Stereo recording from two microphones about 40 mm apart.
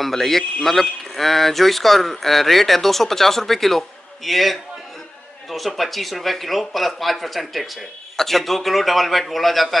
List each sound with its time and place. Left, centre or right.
0.0 s speech: centre